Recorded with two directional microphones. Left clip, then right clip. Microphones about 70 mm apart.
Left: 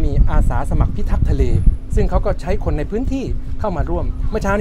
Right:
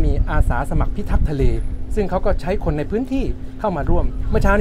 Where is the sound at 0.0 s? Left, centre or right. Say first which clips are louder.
Even; centre.